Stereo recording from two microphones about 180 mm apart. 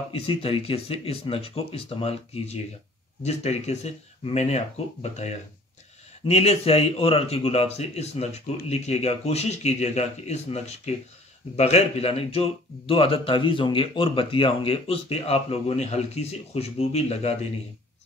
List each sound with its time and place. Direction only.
0.1 s speech: 30° left (ahead or behind)